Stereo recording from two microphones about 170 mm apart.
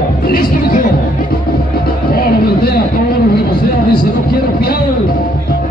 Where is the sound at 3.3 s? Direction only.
60° left (ahead or behind).